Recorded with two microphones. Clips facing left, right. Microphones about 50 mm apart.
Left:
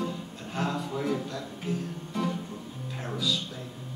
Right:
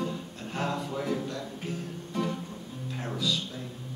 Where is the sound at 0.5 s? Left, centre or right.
Centre.